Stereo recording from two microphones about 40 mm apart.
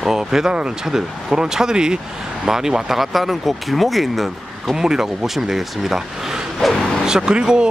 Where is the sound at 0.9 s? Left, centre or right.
Centre.